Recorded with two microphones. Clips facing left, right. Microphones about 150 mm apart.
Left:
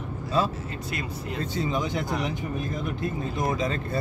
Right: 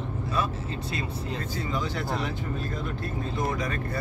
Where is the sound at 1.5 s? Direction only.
20° left (ahead or behind).